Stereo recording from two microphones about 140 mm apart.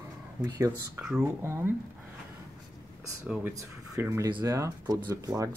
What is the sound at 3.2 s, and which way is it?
Speech, 10° right (ahead or behind).